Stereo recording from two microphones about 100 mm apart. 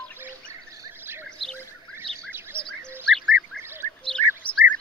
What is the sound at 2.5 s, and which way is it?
Bird, 55° left (ahead or behind).